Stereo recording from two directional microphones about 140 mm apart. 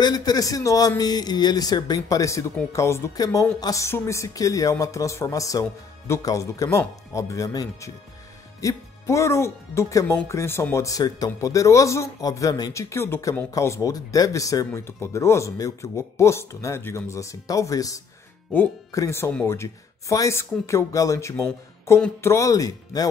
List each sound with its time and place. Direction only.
0.0 s speech: 30° left (ahead or behind)